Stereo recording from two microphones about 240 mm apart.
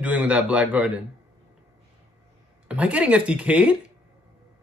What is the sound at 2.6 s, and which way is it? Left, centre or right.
Speech, centre.